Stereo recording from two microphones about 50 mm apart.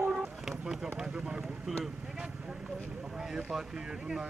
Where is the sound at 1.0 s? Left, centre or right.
Centre.